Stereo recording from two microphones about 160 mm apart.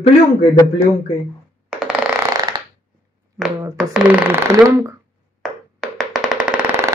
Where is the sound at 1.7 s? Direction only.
5° right (ahead or behind).